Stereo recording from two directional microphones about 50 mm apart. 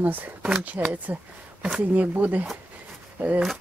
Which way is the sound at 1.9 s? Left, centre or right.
Right.